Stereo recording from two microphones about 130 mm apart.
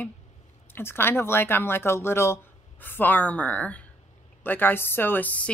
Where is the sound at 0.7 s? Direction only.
15° left (ahead or behind).